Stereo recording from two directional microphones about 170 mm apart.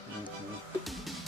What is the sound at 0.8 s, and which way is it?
Music, centre (ahead or behind).